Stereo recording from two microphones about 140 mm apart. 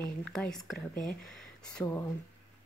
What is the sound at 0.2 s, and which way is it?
Speech, 5° left (ahead or behind).